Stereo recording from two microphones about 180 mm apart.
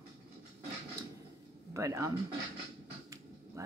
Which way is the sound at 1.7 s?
15° right (ahead or behind).